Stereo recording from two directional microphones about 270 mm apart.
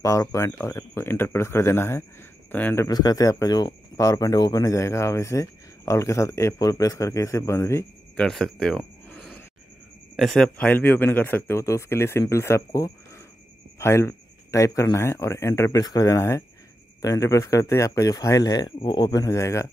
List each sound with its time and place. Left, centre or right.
0.0 s speech: centre